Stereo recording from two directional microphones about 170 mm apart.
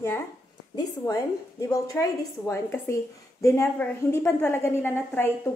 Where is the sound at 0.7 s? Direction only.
20° left (ahead or behind).